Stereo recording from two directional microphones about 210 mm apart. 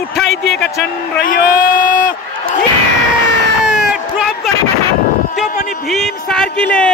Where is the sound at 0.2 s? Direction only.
Centre (ahead or behind).